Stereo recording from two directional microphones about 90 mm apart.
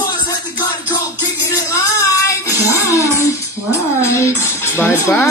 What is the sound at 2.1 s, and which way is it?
Speech, 40° left (ahead or behind).